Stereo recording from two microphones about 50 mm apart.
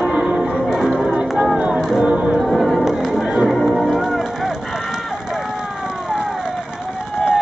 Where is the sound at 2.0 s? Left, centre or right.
Right.